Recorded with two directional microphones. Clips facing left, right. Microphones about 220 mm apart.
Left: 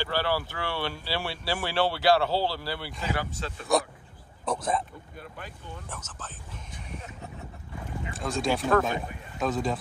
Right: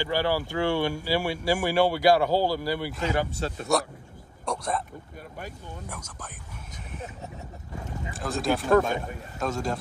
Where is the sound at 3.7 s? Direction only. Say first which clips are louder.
Left 2 dB; centre (ahead or behind).